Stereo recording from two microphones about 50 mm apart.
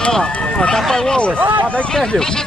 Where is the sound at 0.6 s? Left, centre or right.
Centre.